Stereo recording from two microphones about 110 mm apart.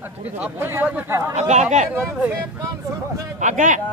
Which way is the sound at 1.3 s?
90° right.